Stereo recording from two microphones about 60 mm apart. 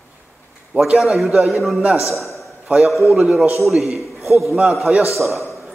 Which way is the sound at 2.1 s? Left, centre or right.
Centre.